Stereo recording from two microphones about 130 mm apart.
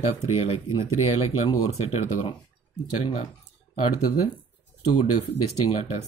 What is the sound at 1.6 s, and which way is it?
Speech, 55° left (ahead or behind).